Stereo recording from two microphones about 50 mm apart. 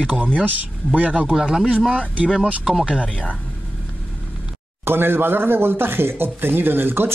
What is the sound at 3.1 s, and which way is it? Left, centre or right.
Speech, left.